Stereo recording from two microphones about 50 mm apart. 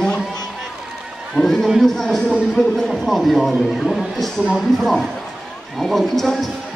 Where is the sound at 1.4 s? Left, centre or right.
Centre.